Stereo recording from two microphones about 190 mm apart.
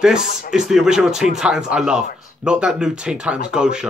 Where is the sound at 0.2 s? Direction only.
45° left (ahead or behind).